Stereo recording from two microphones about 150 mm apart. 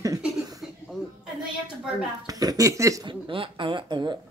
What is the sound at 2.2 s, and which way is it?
Speech, 25° right (ahead or behind).